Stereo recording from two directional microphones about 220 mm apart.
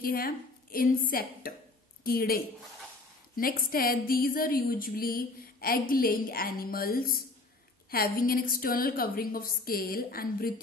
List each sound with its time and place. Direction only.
0.0 s a woman's voice: 40° left (ahead or behind)